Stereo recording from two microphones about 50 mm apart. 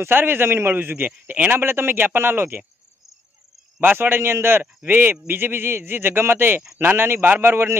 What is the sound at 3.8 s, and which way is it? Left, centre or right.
A man's voice, right.